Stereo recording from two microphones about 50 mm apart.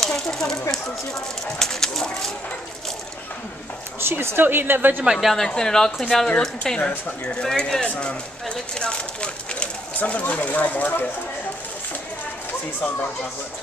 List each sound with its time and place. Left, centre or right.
0.0 s speech: centre
4.0 s a woman's voice: right
5.4 s speech: centre; by 11.0 s left
12.8 s speech: left